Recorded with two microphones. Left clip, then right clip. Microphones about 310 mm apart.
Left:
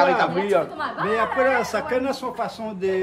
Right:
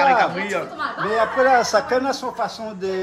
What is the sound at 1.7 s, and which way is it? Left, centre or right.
Speech, centre.